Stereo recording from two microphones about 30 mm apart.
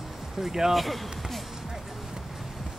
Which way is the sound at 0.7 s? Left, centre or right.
Centre.